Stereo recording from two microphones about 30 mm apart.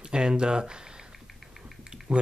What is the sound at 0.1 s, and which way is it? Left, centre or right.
Speech, right.